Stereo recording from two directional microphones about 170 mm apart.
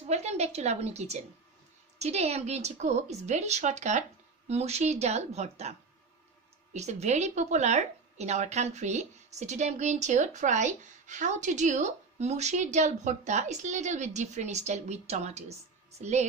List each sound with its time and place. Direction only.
0.0 s a woman's voice: 40° right (ahead or behind)